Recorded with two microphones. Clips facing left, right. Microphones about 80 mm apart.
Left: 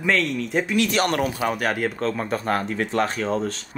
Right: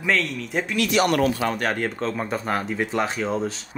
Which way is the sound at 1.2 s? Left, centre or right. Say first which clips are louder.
Right 2 dB; centre.